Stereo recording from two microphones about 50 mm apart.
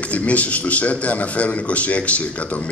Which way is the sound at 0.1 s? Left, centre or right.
Left.